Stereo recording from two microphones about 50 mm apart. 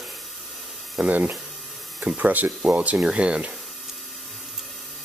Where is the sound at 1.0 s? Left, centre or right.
Right.